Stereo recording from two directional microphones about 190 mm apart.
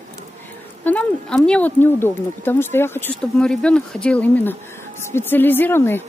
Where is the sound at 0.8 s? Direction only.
5° left (ahead or behind).